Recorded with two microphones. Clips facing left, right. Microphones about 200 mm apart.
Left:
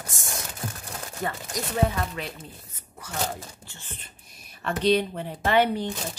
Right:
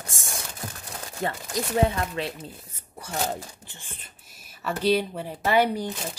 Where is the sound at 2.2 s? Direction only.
30° right (ahead or behind); by 6.2 s 10° right (ahead or behind).